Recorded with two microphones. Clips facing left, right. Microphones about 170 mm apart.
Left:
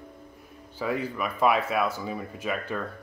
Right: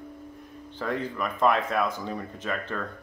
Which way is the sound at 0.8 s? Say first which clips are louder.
Left 1 dB; 10° left (ahead or behind).